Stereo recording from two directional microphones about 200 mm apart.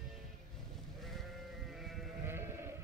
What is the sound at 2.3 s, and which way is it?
Sheep, 10° right (ahead or behind).